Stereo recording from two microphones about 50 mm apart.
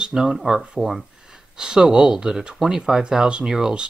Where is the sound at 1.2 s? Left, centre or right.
Centre.